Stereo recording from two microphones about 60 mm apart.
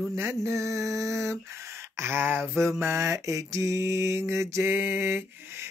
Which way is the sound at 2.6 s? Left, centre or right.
Right.